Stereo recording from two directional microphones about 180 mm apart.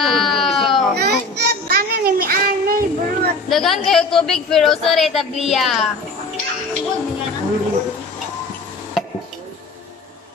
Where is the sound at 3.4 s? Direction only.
Centre (ahead or behind).